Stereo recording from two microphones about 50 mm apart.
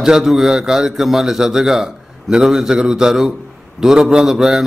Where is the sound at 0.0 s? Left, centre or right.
Centre.